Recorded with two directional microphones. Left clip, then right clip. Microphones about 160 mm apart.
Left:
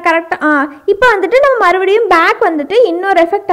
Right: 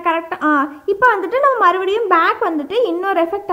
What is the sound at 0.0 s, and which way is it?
A woman's voice, 25° left (ahead or behind).